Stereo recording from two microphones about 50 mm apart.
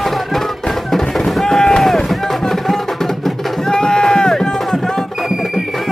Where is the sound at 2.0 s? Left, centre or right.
Centre.